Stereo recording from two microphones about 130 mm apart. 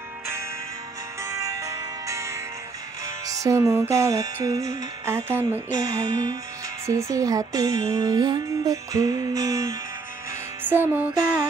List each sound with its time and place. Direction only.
1.2 s music: 25° right (ahead or behind)
5.8 s music: 30° right (ahead or behind)
10.6 s music: 15° right (ahead or behind)